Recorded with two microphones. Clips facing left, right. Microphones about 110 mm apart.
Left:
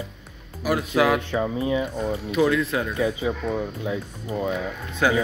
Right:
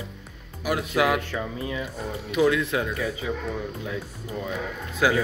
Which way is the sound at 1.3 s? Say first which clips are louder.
Left 7 dB; 20° left (ahead or behind).